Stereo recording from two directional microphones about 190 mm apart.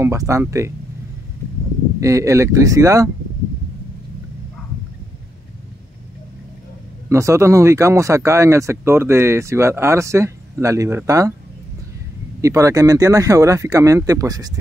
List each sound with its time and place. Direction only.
0.0 s speech: 15° right (ahead or behind)
2.0 s speech: 15° right (ahead or behind)
7.1 s speech: 15° right (ahead or behind)
12.4 s speech: 15° right (ahead or behind)